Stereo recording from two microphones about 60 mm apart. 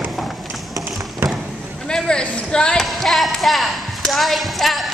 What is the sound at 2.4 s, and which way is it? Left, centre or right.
Speech, centre.